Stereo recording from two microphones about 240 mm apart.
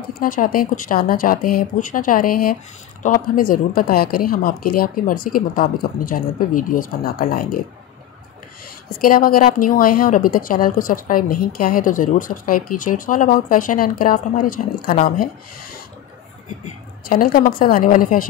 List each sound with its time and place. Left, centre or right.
0.2 s speech: left
9.0 s speech: left
16.6 s speech: left